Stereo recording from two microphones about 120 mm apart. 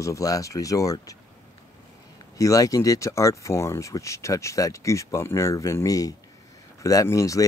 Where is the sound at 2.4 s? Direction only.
30° left (ahead or behind).